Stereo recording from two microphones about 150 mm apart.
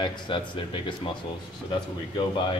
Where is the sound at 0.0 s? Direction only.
30° left (ahead or behind).